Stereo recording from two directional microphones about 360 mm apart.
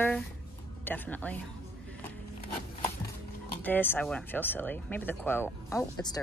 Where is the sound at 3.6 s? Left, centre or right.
Centre.